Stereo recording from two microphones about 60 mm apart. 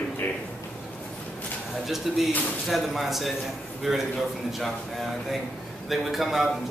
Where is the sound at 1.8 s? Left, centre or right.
Centre.